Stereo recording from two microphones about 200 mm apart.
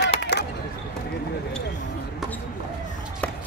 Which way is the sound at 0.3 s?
60° left (ahead or behind).